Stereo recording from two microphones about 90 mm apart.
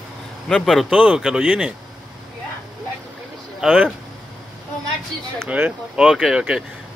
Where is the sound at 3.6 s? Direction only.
15° right (ahead or behind).